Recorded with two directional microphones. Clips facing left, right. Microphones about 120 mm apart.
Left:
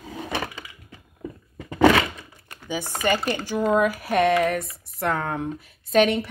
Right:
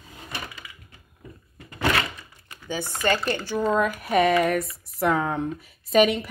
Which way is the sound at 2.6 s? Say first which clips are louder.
Even; 15° left (ahead or behind).